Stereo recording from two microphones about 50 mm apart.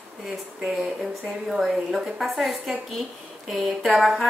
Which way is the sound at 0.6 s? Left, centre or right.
Centre.